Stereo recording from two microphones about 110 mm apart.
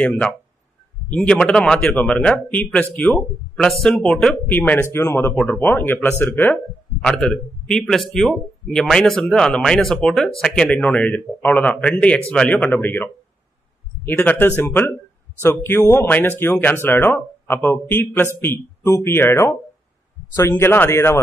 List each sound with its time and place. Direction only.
1.3 s a man's voice: 5° left (ahead or behind)
7.0 s a man's voice: 5° left (ahead or behind); by 21.2 s 25° left (ahead or behind)